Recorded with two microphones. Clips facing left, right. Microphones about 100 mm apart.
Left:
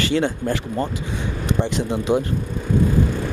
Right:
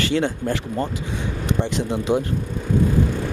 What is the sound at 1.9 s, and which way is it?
Speech, 15° left (ahead or behind).